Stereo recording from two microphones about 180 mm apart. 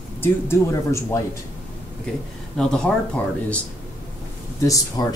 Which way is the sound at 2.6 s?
5° left (ahead or behind).